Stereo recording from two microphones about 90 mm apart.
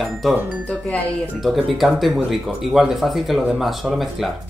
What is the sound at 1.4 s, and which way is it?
Speech, centre (ahead or behind).